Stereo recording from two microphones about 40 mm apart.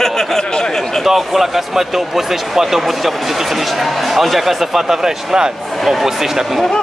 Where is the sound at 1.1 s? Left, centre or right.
Centre.